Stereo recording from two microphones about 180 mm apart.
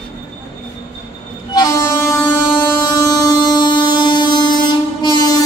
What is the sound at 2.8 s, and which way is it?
Train, 20° left (ahead or behind).